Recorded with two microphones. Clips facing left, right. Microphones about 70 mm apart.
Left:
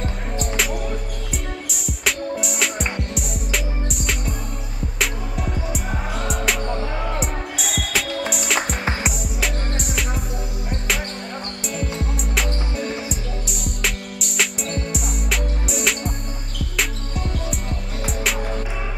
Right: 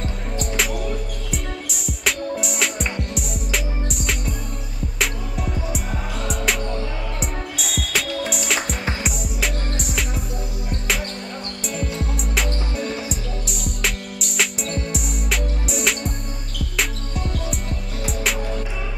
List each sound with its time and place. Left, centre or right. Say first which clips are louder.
1.3 s music: right 1 dB; centre
6.6 s music: left 1 dB; left
7.2 s music: left 2 dB; centre
11.9 s music: even; centre
17.5 s music: even; centre